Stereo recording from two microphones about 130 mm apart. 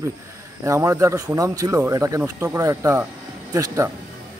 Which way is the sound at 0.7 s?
25° right (ahead or behind).